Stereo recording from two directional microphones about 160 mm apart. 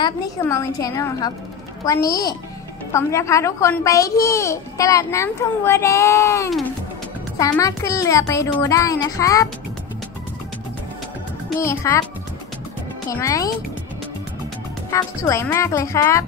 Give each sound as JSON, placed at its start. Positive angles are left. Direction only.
{"t": 0.4, "sound": "a woman's voice", "side_deg": 20}
{"t": 11.6, "sound": "a child's voice", "side_deg": 20}
{"t": 13.1, "sound": "a woman's voice", "side_deg": 20}
{"t": 14.9, "sound": "a woman's voice", "side_deg": 20}